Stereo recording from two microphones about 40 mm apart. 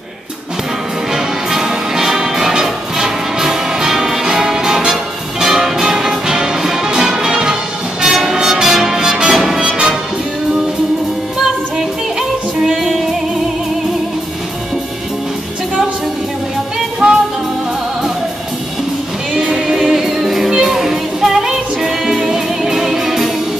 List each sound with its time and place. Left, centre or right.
1.1 s music: centre
12.2 s music: centre
17.0 s music: centre
19.8 s music: centre